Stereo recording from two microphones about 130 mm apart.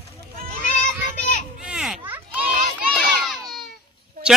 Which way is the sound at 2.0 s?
15° right (ahead or behind).